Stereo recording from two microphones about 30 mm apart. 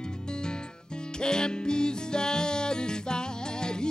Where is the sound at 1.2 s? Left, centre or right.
Left.